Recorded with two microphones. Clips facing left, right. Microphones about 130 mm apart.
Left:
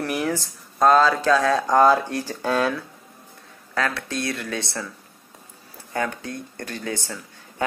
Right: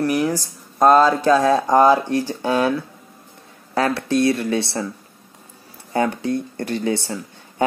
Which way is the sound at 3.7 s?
25° right (ahead or behind).